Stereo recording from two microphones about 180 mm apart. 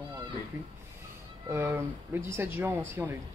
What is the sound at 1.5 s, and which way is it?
Speech, 15° right (ahead or behind).